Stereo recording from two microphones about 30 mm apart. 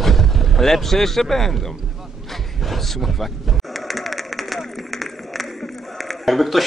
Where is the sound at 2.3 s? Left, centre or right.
Centre.